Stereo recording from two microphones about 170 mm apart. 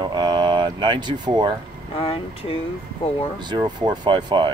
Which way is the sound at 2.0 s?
35° left (ahead or behind).